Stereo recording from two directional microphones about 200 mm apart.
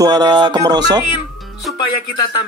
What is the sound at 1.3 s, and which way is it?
Music, centre (ahead or behind).